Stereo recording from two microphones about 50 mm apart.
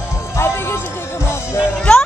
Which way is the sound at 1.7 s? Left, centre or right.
Left.